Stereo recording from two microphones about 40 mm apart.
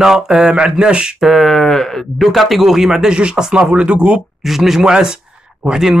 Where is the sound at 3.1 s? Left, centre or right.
Right.